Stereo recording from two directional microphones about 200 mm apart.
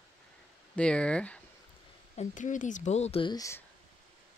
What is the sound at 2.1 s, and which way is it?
Speech, 40° left (ahead or behind).